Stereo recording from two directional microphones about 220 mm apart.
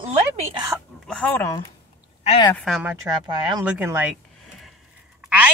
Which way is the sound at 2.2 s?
20° left (ahead or behind).